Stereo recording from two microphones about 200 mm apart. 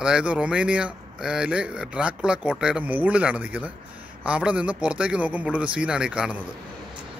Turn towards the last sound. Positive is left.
turn(degrees=-5)  # may be behind; listen again after turning